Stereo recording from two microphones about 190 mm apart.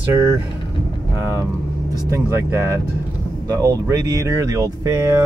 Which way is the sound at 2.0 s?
15° right (ahead or behind).